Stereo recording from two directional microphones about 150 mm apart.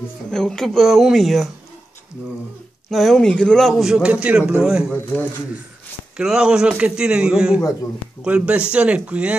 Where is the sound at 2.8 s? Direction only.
Centre (ahead or behind).